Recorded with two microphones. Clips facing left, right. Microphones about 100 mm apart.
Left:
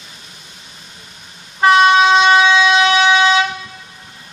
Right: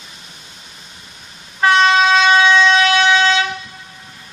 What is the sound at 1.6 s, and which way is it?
Vehicle, 20° left (ahead or behind).